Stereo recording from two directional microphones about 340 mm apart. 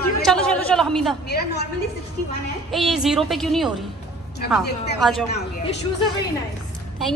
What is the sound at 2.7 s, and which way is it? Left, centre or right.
A woman's voice, centre.